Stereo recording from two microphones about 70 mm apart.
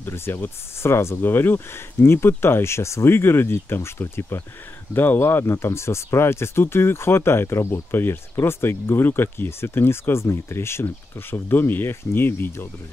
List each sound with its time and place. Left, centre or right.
0.0 s speech: left